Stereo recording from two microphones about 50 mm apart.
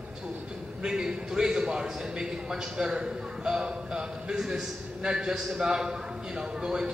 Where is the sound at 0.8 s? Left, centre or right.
Centre.